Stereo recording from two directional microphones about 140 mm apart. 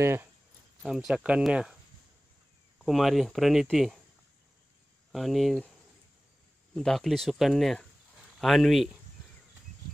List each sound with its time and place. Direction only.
0.0 s speech: 15° right (ahead or behind)
0.8 s speech: 5° right (ahead or behind)
2.8 s speech: centre (ahead or behind)
5.1 s speech: centre (ahead or behind)
6.7 s speech: 5° left (ahead or behind)